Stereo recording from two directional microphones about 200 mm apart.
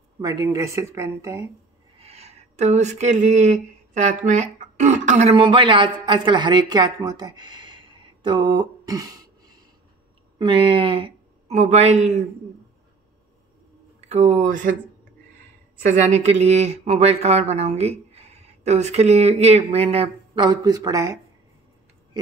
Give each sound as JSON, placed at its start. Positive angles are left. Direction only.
{"t": 0.2, "sound": "speech", "side_deg": -15}
{"t": 2.0, "sound": "speech", "side_deg": -30}
{"t": 10.4, "sound": "speech", "side_deg": -25}
{"t": 14.0, "sound": "speech", "side_deg": -35}
{"t": 15.9, "sound": "speech", "side_deg": -35}